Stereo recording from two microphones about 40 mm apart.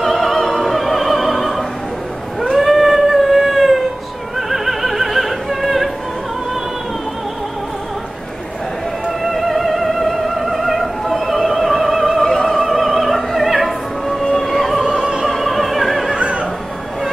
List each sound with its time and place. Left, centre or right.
0.0 s opera: centre
2.5 s a sound: centre
4.4 s opera: centre
9.2 s music: centre
12.2 s opera: centre
12.5 s opera: centre
14.9 s opera: centre
15.2 s opera: centre
16.2 s neigh: right